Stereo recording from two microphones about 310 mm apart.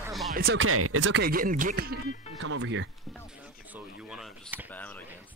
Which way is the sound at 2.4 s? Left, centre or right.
Right.